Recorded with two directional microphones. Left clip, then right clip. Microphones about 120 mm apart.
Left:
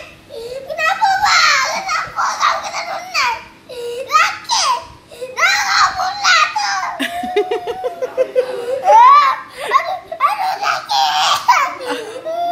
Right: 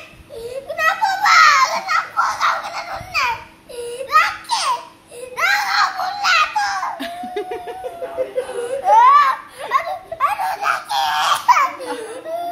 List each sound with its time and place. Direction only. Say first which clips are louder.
0.7 s children playing: left 3 dB; 15° right (ahead or behind)
2.1 s babbling: left 5 dB; centre (ahead or behind)
5.4 s a sound: left 3 dB; 5° right (ahead or behind)
7.0 s laughter: left 8 dB; 20° left (ahead or behind)
8.8 s giggle: left 3 dB; 10° right (ahead or behind)